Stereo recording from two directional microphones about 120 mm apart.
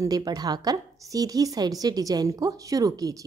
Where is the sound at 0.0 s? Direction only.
30° right (ahead or behind).